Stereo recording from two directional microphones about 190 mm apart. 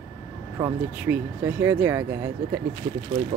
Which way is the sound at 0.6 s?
20° right (ahead or behind).